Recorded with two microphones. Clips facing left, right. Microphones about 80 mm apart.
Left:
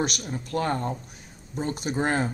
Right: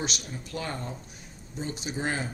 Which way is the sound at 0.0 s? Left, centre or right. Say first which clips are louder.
Left 6 dB; left.